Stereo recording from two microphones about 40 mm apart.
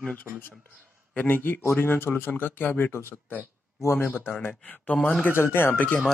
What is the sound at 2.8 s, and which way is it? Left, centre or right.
Speech, left.